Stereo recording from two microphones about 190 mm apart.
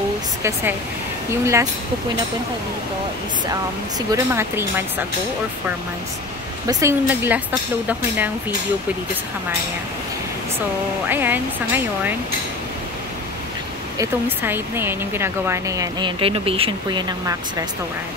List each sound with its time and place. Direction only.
0.4 s speech: 15° right (ahead or behind)
4.1 s speech: 15° right (ahead or behind)
6.7 s speech: 15° right (ahead or behind)
11.1 s speech: 10° right (ahead or behind)
13.9 s speech: 10° right (ahead or behind)
16.2 s speech: 30° right (ahead or behind)